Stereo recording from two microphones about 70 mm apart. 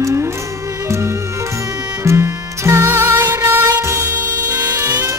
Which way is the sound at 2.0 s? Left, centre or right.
Right.